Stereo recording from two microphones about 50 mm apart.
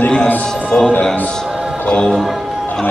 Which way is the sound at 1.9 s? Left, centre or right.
Left.